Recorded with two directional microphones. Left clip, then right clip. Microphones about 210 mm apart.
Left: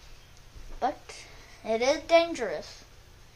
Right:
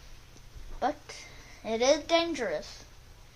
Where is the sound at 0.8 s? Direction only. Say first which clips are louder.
Left 1 dB; 20° left (ahead or behind).